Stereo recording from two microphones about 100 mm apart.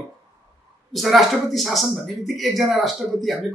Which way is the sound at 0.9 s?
Centre (ahead or behind).